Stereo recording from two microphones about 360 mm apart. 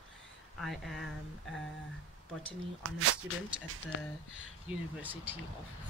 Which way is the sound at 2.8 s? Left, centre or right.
Right.